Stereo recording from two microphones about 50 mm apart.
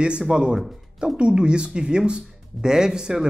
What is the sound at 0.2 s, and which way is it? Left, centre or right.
Speech, centre.